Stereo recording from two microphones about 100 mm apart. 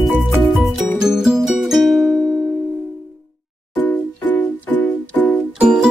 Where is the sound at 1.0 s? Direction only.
5° right (ahead or behind).